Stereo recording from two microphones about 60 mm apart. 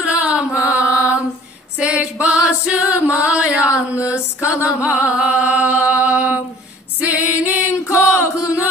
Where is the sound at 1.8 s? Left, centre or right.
Centre.